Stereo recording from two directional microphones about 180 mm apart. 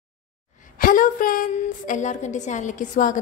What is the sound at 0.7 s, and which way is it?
A woman's voice, 50° left (ahead or behind).